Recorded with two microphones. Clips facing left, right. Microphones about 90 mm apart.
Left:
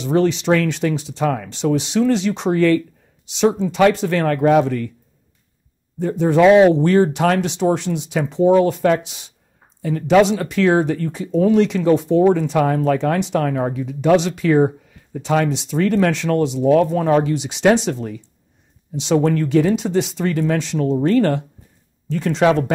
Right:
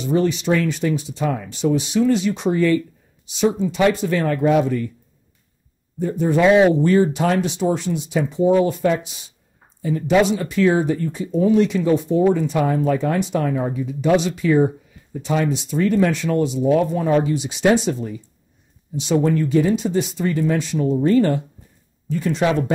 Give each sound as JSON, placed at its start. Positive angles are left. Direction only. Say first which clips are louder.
{"t": 0.0, "sound": "speech", "louder": "left 2 dB", "side_deg": 90}
{"t": 3.3, "sound": "speech", "louder": "left 3 dB", "side_deg": 90}
{"t": 5.9, "sound": "speech", "louder": "left 3 dB", "side_deg": 85}
{"t": 6.7, "sound": "speech", "louder": "left 1 dB", "side_deg": 70}